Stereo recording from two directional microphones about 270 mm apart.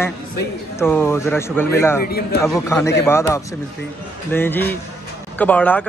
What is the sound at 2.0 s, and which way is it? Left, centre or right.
Speech, left.